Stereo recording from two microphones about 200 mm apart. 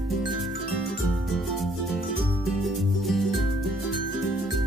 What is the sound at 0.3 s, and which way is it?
Music, centre (ahead or behind).